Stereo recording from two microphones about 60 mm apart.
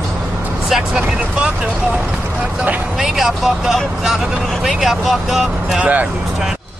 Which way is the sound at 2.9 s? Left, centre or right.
Centre.